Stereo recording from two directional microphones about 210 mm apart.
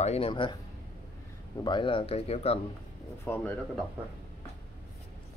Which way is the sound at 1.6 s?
20° left (ahead or behind).